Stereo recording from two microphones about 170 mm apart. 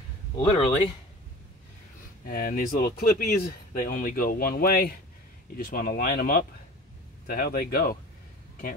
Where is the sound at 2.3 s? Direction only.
55° left (ahead or behind).